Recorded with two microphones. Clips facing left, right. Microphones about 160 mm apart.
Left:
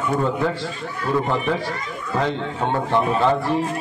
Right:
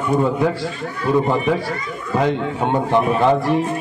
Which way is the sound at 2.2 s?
15° right (ahead or behind).